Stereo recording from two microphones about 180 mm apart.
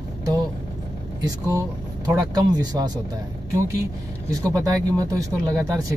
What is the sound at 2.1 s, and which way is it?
Speech, 20° right (ahead or behind).